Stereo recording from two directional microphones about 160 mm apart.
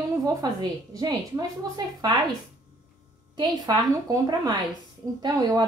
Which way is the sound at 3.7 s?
25° right (ahead or behind).